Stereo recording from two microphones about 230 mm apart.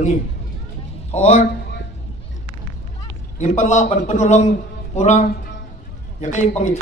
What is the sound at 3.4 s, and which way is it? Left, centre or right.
A man's voice, left.